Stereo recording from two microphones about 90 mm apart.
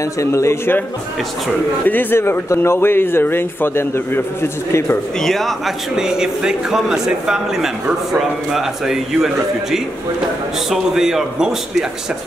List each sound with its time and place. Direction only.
0.2 s a man's voice: 30° left (ahead or behind)
1.9 s speech: 20° left (ahead or behind)
5.2 s a man's voice: 5° left (ahead or behind)